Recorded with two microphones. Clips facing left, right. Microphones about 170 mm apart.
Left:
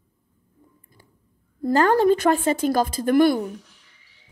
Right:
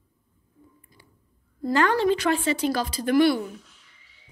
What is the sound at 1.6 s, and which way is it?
Speech, 50° left (ahead or behind).